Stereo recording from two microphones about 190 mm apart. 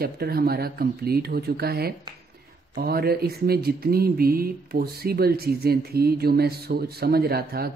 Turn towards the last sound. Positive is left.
turn(degrees=-55)  # may be behind; listen again after turning